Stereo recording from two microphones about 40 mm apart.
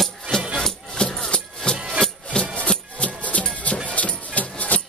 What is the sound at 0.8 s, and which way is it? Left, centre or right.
Keys jangling, left.